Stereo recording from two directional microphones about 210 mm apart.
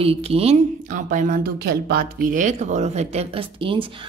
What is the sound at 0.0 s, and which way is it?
Speech, 25° right (ahead or behind).